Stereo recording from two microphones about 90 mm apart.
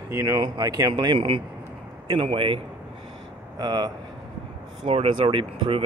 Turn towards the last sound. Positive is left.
turn(degrees=-80)